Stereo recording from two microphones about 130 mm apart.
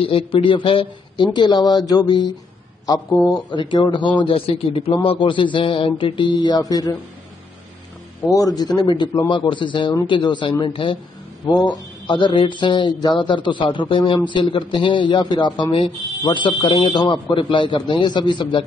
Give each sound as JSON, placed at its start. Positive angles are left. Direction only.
{"t": 0.0, "sound": "speech", "side_deg": 45}
{"t": 3.3, "sound": "speech", "side_deg": 35}
{"t": 8.3, "sound": "speech", "side_deg": 25}